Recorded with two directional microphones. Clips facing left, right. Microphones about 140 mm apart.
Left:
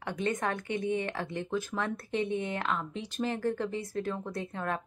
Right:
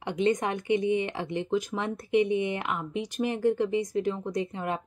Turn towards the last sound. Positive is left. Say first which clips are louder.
# right 4 dB
turn(degrees=-15)  # may be behind; listen again after turning